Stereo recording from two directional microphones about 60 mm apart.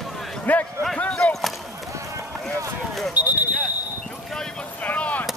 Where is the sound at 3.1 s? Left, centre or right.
Right.